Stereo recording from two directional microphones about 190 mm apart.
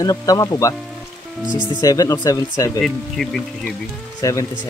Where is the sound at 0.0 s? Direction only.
20° left (ahead or behind).